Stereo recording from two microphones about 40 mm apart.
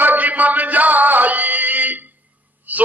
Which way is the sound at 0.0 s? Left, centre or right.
Right.